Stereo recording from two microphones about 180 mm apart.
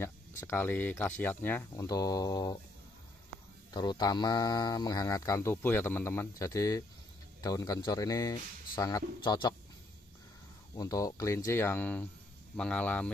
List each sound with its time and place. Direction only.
0.0 s speech: 10° left (ahead or behind)
3.7 s speech: 25° left (ahead or behind)
10.8 s speech: 20° left (ahead or behind)